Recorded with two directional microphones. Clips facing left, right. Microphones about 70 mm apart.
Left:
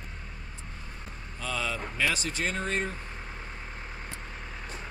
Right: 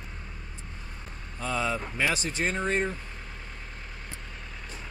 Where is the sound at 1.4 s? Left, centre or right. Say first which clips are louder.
Right 3 dB; right.